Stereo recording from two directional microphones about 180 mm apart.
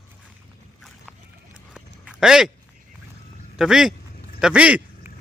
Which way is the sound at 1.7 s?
5° right (ahead or behind).